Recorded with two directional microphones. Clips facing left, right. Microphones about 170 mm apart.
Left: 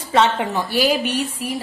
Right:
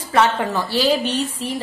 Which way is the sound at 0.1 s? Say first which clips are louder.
Even; 20° left (ahead or behind).